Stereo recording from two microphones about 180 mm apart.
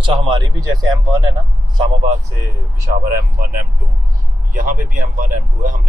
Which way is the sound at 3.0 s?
55° right (ahead or behind).